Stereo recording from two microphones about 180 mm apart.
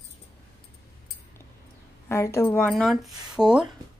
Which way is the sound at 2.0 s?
15° left (ahead or behind).